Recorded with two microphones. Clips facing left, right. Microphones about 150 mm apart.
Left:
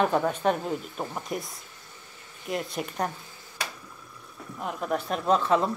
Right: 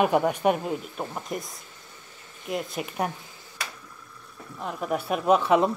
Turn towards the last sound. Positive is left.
turn(degrees=-10)  # may be behind; listen again after turning